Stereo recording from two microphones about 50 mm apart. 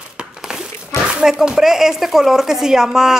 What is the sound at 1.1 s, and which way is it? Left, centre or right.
Speech, centre.